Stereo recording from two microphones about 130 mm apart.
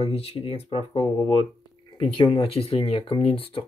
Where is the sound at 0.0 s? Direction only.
50° left (ahead or behind).